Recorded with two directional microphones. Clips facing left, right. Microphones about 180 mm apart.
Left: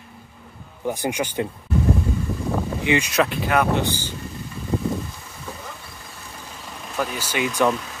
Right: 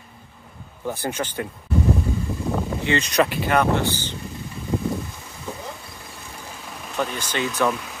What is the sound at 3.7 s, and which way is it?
Speech, 15° left (ahead or behind).